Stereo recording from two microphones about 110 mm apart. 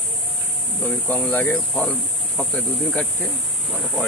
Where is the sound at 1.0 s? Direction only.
15° left (ahead or behind).